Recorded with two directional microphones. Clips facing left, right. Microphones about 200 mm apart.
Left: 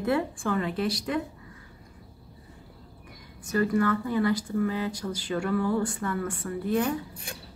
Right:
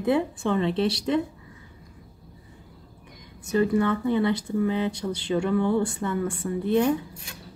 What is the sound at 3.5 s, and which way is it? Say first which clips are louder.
A woman's voice: right 2 dB; 20° right (ahead or behind).